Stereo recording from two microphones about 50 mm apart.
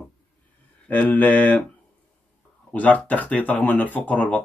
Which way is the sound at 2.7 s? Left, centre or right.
Left.